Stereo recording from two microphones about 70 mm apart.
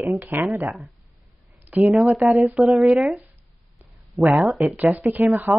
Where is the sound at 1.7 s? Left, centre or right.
Right.